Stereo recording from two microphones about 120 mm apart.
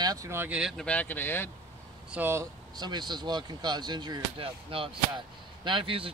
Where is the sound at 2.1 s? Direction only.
20° right (ahead or behind).